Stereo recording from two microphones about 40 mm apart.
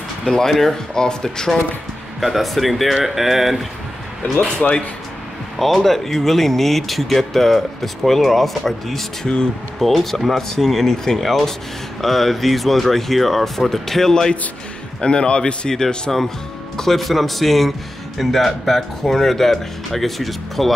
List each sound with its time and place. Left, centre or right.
0.2 s speech: centre
2.1 s a man's voice: centre
4.4 s speech: left
5.6 s a man's voice: centre; by 15.7 s left
15.7 s a man's voice: centre